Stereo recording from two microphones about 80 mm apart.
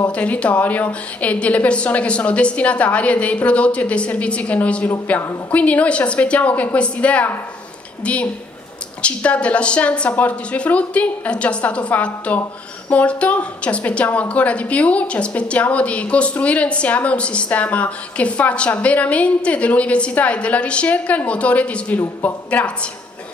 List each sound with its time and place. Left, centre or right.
0.1 s a woman's voice: centre